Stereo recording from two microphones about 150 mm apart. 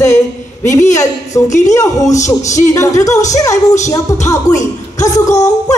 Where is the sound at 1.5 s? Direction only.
50° left (ahead or behind).